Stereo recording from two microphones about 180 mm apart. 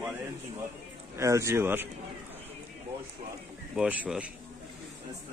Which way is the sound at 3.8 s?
5° right (ahead or behind).